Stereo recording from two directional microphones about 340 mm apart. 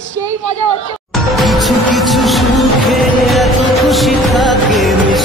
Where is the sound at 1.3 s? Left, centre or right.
Centre.